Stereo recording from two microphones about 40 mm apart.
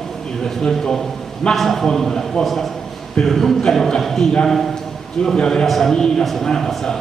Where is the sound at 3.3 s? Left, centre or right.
Centre.